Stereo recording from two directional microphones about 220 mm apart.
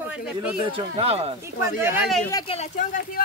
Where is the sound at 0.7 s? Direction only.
25° right (ahead or behind).